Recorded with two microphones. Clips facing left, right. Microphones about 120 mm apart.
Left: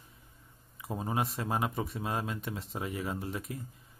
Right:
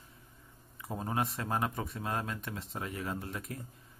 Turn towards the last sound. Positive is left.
turn(degrees=20)  # may be behind; listen again after turning